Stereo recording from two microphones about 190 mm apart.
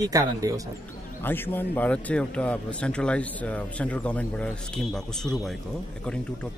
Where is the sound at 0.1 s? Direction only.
20° right (ahead or behind).